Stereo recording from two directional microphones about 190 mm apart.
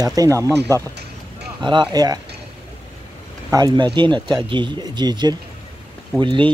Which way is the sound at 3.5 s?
20° right (ahead or behind).